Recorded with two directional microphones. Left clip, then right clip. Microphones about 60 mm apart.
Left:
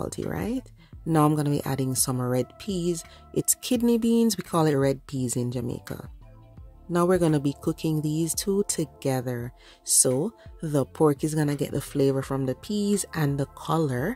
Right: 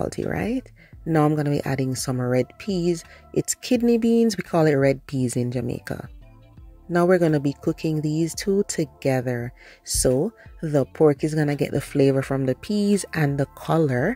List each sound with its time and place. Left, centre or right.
0.0 s speech: right
1.1 s speech: centre
1.6 s speech: centre
2.6 s speech: centre
3.3 s speech: centre
4.8 s speech: right
6.9 s speech: centre
9.2 s speech: right
9.8 s speech: centre
11.4 s speech: right